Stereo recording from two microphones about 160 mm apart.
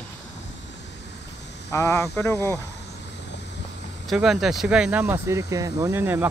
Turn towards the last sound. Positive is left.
turn(degrees=-15)  # may be behind; listen again after turning